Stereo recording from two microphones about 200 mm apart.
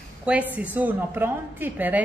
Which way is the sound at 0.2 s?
5° right (ahead or behind).